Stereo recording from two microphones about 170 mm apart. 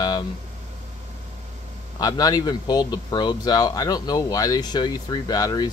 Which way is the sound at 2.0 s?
20° left (ahead or behind).